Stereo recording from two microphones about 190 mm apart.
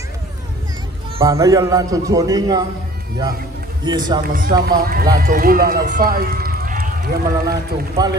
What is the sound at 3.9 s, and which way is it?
Speech, 20° right (ahead or behind).